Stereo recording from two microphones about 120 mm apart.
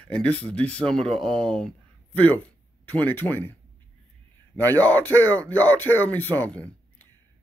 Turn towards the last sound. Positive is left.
turn(degrees=15)  # may be behind; listen again after turning